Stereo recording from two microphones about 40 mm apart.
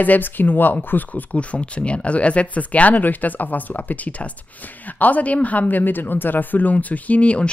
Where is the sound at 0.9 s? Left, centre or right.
Left.